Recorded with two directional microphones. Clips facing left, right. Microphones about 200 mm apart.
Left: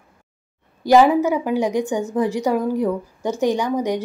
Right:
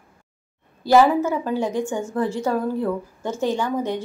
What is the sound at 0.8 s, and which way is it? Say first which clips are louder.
Speech: left 2 dB; 15° left (ahead or behind).